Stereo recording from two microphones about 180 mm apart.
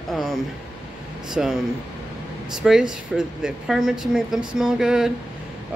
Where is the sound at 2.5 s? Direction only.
5° right (ahead or behind).